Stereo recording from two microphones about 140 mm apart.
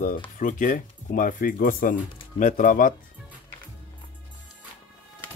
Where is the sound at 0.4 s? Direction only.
65° left (ahead or behind).